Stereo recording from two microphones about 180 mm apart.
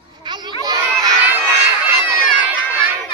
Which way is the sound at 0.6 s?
20° right (ahead or behind).